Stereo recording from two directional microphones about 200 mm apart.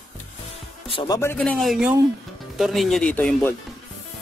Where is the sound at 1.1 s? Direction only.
10° left (ahead or behind).